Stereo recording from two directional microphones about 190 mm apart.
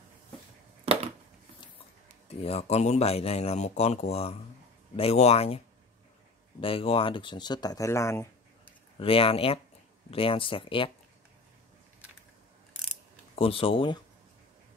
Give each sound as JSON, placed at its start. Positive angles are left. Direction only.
{"t": 0.9, "sound": "a sound", "side_deg": -30}
{"t": 2.2, "sound": "speech", "side_deg": 30}
{"t": 6.6, "sound": "speech", "side_deg": 30}
{"t": 9.0, "sound": "speech", "side_deg": 30}
{"t": 13.4, "sound": "speech", "side_deg": 30}